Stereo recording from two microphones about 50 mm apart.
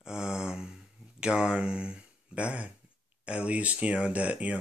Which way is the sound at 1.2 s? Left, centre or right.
Centre.